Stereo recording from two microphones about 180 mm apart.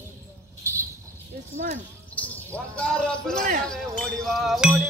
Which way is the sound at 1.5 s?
40° right (ahead or behind).